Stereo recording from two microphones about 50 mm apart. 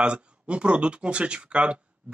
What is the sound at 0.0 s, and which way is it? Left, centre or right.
Speech, right.